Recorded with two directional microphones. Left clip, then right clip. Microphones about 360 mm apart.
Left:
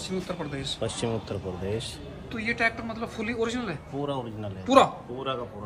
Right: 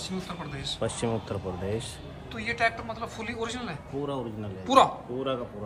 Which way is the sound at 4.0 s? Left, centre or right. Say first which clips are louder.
Left 1 dB; centre.